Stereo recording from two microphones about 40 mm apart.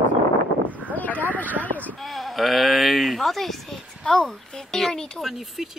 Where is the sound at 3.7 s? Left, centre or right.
Left.